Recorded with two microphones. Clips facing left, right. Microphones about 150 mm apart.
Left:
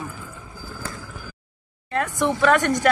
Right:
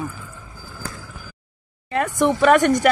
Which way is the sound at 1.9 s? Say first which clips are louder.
Right 3 dB; 15° right (ahead or behind).